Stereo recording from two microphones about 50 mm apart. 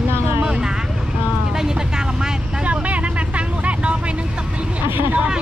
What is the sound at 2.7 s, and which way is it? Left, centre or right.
Vehicle, right.